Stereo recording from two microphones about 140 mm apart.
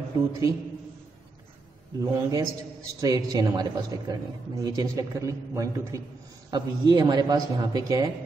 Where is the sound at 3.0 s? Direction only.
25° right (ahead or behind).